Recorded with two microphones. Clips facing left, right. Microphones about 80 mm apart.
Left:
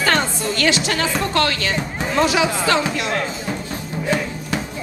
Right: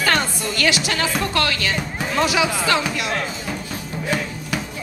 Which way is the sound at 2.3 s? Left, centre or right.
Left.